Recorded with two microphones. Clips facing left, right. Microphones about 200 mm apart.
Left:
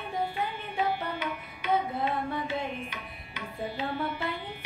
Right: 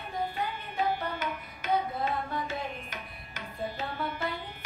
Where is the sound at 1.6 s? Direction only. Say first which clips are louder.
Left 1 dB; 45° right (ahead or behind).